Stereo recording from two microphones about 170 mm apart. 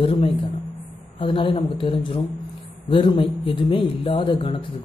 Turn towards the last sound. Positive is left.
turn(degrees=30)  # may be behind; listen again after turning